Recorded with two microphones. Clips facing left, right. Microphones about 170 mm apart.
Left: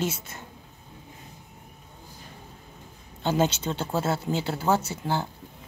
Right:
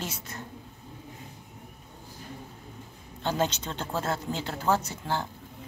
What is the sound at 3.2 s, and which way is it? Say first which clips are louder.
Speech: left 4 dB; 5° left (ahead or behind).